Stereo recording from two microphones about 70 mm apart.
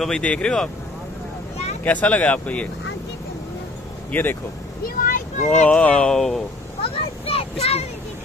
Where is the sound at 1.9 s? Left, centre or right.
Left.